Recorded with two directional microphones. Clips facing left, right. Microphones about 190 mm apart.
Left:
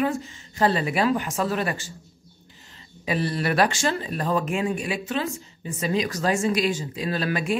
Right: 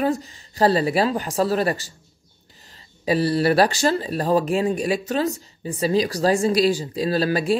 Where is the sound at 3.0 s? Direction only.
35° right (ahead or behind).